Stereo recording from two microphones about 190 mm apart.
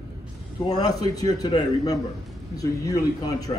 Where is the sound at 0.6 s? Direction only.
20° left (ahead or behind).